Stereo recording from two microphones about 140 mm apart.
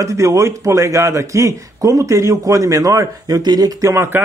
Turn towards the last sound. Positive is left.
turn(degrees=-20)  # may be behind; listen again after turning